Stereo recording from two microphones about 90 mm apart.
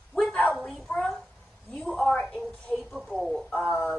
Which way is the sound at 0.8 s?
10° left (ahead or behind).